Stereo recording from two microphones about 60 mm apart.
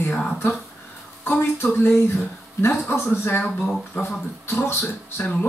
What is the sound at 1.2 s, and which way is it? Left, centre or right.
Speech, left.